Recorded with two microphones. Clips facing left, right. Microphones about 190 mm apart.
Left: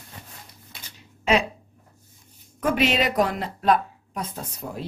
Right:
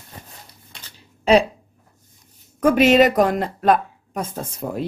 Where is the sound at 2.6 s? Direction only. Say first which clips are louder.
Right 8 dB; 45° right (ahead or behind).